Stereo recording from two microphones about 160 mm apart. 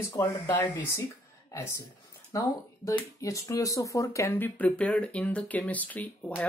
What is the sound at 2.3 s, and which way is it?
Speech, 20° left (ahead or behind).